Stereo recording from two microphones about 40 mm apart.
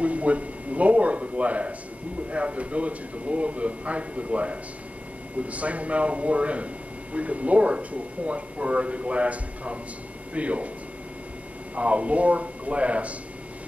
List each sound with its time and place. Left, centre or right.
0.0 s speech: right
11.7 s speech: right